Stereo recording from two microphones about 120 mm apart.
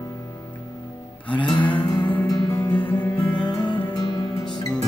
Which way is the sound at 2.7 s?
15° left (ahead or behind).